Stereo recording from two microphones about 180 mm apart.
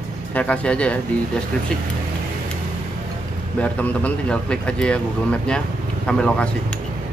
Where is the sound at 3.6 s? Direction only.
5° left (ahead or behind).